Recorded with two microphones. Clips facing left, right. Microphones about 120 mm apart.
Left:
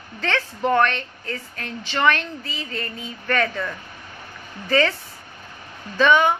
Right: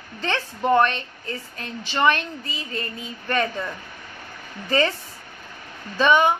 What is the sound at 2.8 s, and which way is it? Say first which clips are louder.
Speech: left 1 dB; 25° right (ahead or behind).